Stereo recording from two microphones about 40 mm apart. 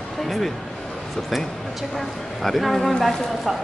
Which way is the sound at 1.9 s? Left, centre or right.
Centre.